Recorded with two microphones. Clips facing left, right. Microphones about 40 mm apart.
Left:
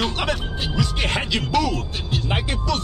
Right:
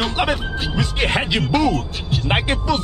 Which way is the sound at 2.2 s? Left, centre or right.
Right.